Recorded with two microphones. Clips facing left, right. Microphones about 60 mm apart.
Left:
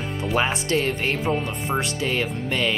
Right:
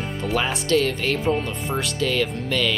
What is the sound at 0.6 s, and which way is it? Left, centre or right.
Speech, left.